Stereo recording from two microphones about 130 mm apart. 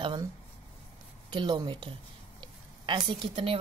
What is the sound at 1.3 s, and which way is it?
Speech, 35° right (ahead or behind).